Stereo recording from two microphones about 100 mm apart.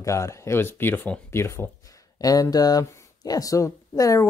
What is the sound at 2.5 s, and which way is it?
Speech, 40° left (ahead or behind).